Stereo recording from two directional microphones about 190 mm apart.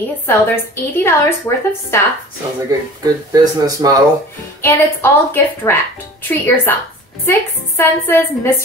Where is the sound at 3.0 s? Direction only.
20° right (ahead or behind).